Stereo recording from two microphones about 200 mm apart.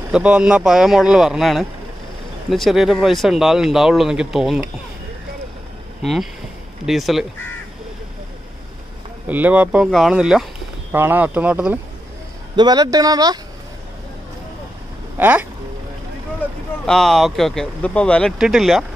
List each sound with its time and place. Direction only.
0.1 s speech: 5° right (ahead or behind)
6.9 s speech: centre (ahead or behind)
9.3 s speech: 10° right (ahead or behind)
12.5 s speech: 20° right (ahead or behind)
15.1 s speech: 10° right (ahead or behind)
16.8 s speech: centre (ahead or behind)